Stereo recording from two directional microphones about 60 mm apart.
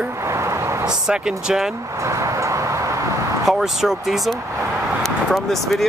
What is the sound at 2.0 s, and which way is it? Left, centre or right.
Vehicle, right.